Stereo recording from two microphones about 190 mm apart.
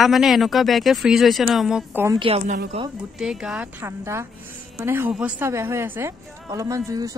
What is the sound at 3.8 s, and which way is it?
A woman's voice, 15° right (ahead or behind).